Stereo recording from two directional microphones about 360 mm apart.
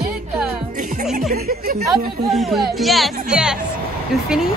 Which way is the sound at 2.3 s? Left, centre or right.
Centre.